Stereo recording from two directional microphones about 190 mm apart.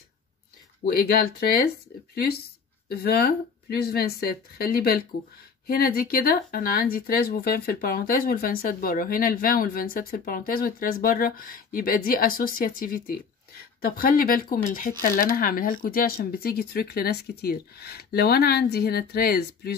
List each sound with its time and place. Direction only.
0.8 s speech: 50° left (ahead or behind)